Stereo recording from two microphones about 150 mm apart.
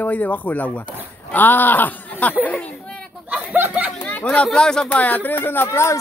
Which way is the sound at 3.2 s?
10° right (ahead or behind).